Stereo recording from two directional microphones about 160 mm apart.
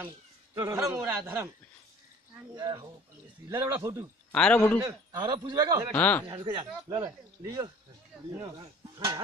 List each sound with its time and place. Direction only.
0.9 s a man's voice: 15° right (ahead or behind)
2.5 s speech: 25° right (ahead or behind)
4.3 s a man's voice: 5° left (ahead or behind)
4.8 s speech: 25° right (ahead or behind)
5.9 s a man's voice: 10° left (ahead or behind)
6.4 s speech: 25° right (ahead or behind)